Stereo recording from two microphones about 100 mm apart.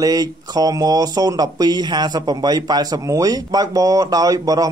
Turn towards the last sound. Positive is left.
turn(degrees=-35)  # may be behind; listen again after turning